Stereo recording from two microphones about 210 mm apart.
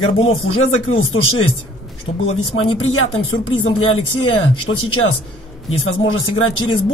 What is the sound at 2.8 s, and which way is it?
Speech, 70° left (ahead or behind).